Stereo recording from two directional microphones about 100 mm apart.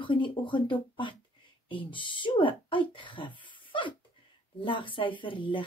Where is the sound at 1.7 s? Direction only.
60° left (ahead or behind).